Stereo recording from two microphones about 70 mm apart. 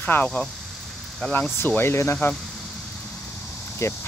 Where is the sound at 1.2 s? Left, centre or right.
Centre.